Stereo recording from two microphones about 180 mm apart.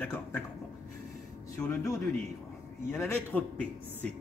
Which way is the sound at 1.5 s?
15° left (ahead or behind).